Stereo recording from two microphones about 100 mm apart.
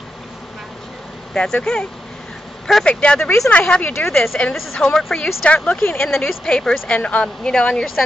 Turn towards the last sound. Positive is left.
turn(degrees=10)  # may be behind; listen again after turning